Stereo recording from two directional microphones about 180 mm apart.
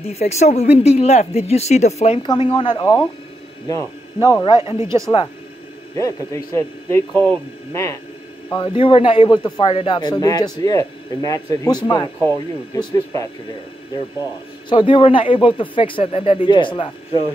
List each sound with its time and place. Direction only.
0.0 s speech: 35° left (ahead or behind); by 4.6 s 20° left (ahead or behind)
4.9 s speech: 35° left (ahead or behind)
5.9 s a man's voice: 15° left (ahead or behind)
8.5 s speech: 30° left (ahead or behind)
14.7 s speech: 25° left (ahead or behind)